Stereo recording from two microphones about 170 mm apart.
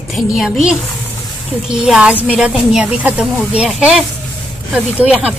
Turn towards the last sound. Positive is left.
turn(degrees=-5)  # may be behind; listen again after turning